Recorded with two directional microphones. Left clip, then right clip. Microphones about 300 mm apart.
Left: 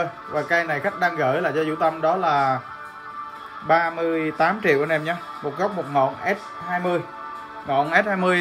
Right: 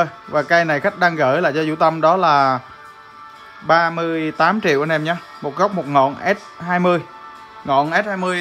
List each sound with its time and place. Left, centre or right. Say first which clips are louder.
0.0 s a man's voice: right 6 dB; centre
3.6 s a man's voice: right 4 dB; centre